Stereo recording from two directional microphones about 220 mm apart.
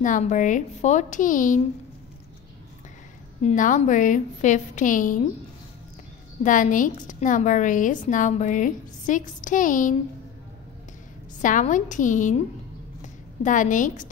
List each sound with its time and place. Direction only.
0.0 s a woman's voice: 35° left (ahead or behind)
3.4 s a woman's voice: 35° left (ahead or behind)
6.4 s a woman's voice: 35° left (ahead or behind)
11.4 s a woman's voice: 35° left (ahead or behind)
13.4 s a woman's voice: 35° left (ahead or behind)